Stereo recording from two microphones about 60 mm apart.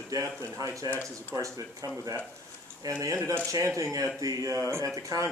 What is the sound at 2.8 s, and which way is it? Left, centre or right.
Speech, right.